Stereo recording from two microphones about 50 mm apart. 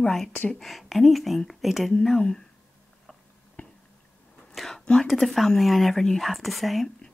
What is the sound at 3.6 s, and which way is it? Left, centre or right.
Squish, left.